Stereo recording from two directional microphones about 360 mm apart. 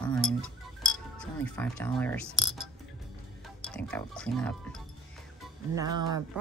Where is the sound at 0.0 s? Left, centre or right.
Centre.